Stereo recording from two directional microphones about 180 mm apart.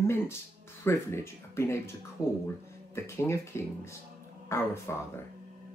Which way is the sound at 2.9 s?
15° left (ahead or behind).